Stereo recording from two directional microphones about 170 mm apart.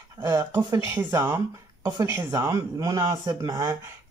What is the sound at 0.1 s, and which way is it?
Speech, 20° right (ahead or behind).